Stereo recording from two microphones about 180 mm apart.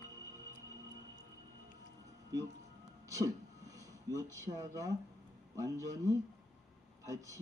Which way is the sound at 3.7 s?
15° right (ahead or behind).